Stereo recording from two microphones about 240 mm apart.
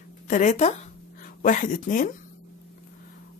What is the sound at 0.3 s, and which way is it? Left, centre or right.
Speech, left.